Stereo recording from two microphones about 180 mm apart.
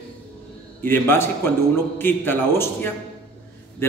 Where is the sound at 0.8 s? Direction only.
10° left (ahead or behind).